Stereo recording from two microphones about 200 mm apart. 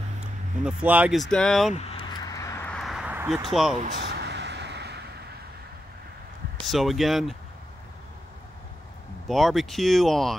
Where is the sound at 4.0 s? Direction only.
55° right (ahead or behind).